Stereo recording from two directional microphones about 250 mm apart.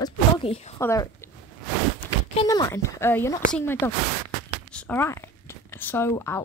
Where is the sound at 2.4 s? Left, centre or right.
Centre.